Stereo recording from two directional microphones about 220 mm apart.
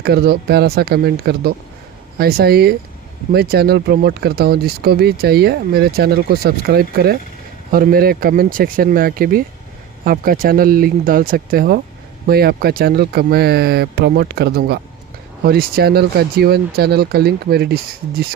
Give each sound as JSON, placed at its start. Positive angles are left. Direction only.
{"t": 0.0, "sound": "speech", "side_deg": -45}